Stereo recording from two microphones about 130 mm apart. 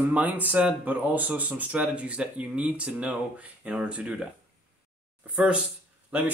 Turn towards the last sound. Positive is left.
turn(degrees=-10)  # may be behind; listen again after turning